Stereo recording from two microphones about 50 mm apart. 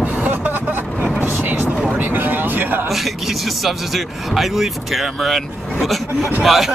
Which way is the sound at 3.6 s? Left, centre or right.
Centre.